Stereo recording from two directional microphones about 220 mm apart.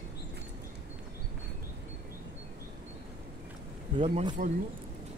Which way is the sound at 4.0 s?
30° right (ahead or behind).